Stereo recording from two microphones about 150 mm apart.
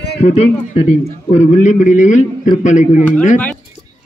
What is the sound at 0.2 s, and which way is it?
A man's voice, 45° left (ahead or behind).